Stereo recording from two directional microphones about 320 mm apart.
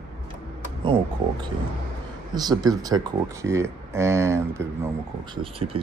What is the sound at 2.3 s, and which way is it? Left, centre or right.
Speech, centre.